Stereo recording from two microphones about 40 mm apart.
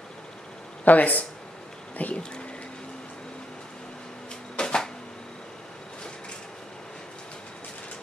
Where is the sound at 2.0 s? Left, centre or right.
Left.